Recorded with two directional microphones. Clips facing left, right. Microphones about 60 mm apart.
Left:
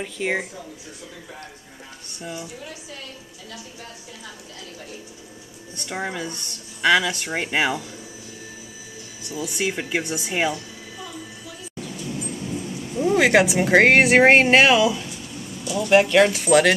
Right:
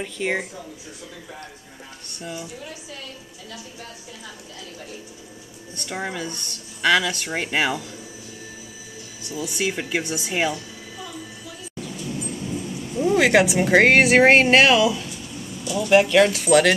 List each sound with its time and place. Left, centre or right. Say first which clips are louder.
0.0 s speech: even; centre
5.9 s speech: even; centre
9.3 s speech: even; centre
12.0 s a sound: even; centre
13.0 s speech: even; centre
15.6 s a sound: even; centre
15.9 s speech: even; centre